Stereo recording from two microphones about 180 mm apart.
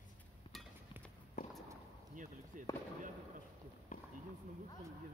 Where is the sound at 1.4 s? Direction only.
50° left (ahead or behind).